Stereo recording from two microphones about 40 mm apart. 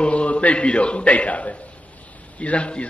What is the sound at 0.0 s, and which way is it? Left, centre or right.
A man's voice, left.